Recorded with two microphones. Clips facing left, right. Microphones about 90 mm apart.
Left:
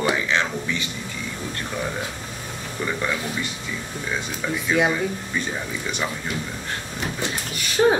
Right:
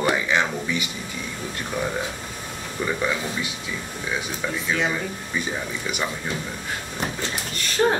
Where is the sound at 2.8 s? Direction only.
10° right (ahead or behind).